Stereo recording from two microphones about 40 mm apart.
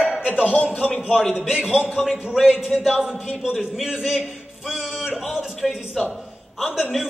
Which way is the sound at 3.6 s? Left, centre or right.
Centre.